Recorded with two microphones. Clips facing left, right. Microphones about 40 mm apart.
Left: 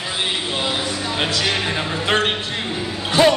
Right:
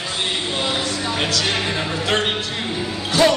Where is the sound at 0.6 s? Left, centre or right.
Centre.